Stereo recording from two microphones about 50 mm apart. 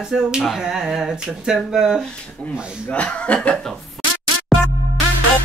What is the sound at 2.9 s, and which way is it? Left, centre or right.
Speech, left.